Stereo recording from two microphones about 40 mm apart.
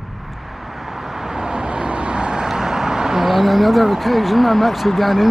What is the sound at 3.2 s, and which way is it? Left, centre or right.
Speech, centre.